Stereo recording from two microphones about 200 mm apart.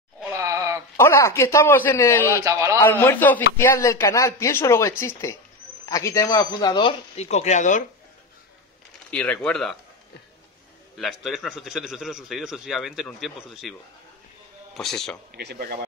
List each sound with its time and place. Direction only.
0.3 s a sound: 15° right (ahead or behind)
0.9 s speech: 15° left (ahead or behind)
2.4 s a man's voice: 15° right (ahead or behind)
2.8 s speech: 10° left (ahead or behind); by 7.8 s 35° left (ahead or behind)
9.1 s a man's voice: 5° left (ahead or behind)
11.0 s a man's voice: centre (ahead or behind)
15.3 s speech: 55° right (ahead or behind)